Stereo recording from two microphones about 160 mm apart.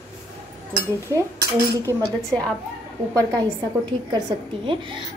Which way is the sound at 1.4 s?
70° right (ahead or behind).